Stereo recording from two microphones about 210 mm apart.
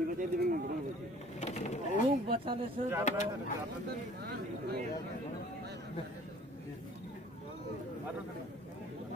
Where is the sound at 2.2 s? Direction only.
25° right (ahead or behind).